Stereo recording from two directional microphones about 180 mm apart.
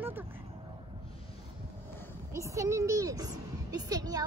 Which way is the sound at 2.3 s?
15° right (ahead or behind).